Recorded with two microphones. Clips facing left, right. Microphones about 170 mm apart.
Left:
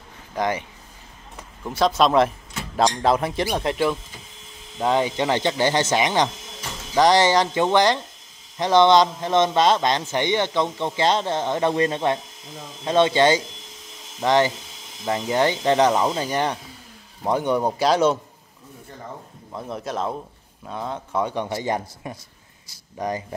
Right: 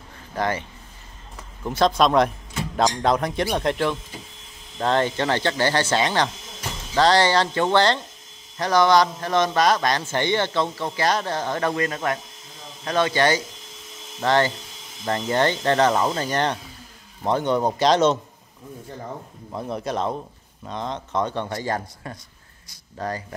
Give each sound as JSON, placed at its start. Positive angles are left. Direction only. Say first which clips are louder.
{"t": 0.4, "sound": "speech", "louder": "left 1 dB", "side_deg": 15}
{"t": 1.7, "sound": "a man's voice", "louder": "even", "side_deg": 5}
{"t": 19.5, "sound": "a man's voice", "louder": "right 2 dB", "side_deg": 0}